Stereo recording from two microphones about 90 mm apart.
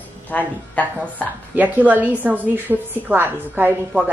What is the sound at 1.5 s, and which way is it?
A woman's voice, 20° right (ahead or behind).